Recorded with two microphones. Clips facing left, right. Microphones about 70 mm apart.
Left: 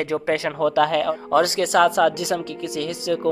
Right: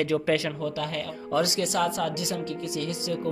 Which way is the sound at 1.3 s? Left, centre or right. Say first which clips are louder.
Left 6 dB; left.